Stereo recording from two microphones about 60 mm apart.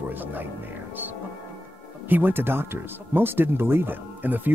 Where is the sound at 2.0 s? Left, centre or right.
Right.